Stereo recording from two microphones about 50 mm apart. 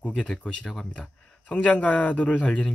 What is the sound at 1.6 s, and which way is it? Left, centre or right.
Speech, left.